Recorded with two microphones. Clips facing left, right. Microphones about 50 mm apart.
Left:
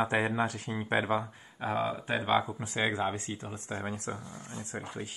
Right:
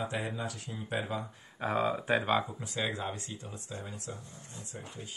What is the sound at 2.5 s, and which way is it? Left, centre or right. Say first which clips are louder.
Speech: left 4 dB; left.